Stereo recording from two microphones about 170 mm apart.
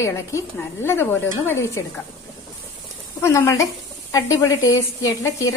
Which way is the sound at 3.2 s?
15° left (ahead or behind).